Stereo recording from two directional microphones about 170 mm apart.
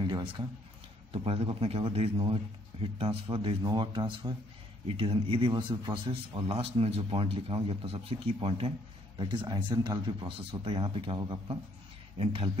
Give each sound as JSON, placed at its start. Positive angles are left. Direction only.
{"t": 0.0, "sound": "a sound", "side_deg": -25}
{"t": 1.1, "sound": "a man's voice", "side_deg": -35}
{"t": 6.5, "sound": "a man's voice", "side_deg": -35}